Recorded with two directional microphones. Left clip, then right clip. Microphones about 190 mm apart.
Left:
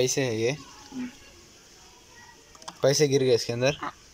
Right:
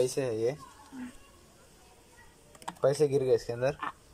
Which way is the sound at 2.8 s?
5° right (ahead or behind).